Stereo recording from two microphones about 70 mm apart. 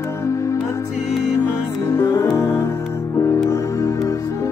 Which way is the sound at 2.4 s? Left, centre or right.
Left.